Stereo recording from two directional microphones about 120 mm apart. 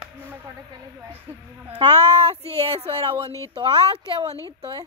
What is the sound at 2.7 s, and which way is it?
Speech, 50° right (ahead or behind).